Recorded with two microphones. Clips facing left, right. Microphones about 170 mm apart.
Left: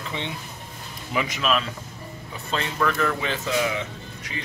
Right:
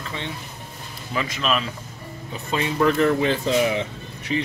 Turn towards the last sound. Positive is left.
turn(degrees=-20)  # may be behind; listen again after turning